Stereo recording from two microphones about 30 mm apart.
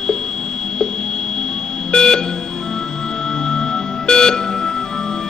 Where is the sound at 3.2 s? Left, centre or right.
Left.